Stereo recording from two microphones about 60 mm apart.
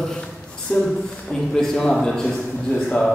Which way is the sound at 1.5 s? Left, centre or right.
Centre.